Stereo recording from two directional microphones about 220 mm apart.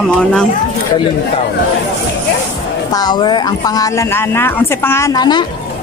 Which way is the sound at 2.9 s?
20° left (ahead or behind).